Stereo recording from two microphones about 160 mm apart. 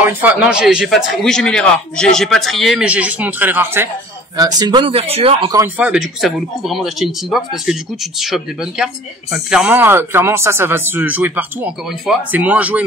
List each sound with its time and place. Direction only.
0.0 s speech: 10° right (ahead or behind)
4.4 s speech: 25° right (ahead or behind)
5.8 s speech: 5° right (ahead or behind)